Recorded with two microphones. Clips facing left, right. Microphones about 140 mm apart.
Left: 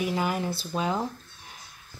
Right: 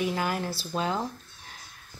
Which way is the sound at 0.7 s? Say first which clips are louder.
Even; 5° left (ahead or behind).